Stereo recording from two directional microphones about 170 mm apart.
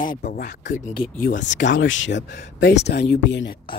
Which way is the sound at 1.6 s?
90° left.